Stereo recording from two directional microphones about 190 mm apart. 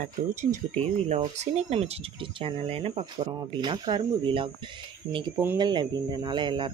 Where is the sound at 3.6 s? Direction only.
25° right (ahead or behind).